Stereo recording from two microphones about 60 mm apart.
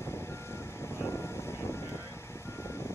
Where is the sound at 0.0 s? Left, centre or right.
Left.